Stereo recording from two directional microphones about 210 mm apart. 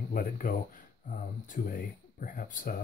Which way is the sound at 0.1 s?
40° left (ahead or behind).